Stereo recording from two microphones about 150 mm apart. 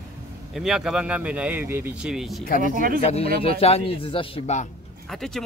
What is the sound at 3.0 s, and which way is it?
Speech, 40° left (ahead or behind).